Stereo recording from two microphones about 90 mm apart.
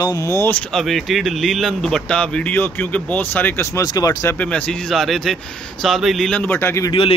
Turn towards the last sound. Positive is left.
turn(degrees=25)  # may be behind; listen again after turning